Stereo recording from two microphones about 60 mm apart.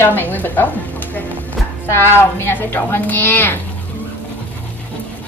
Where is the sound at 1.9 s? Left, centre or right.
Left.